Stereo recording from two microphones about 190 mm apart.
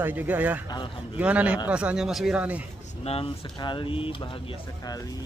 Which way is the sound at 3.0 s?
30° left (ahead or behind).